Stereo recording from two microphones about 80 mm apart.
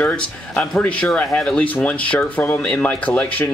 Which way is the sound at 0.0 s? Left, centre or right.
Centre.